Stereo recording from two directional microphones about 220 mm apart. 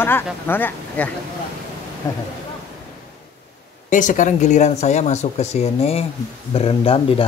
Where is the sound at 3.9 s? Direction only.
35° left (ahead or behind).